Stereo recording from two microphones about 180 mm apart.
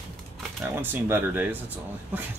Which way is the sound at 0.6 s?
10° right (ahead or behind).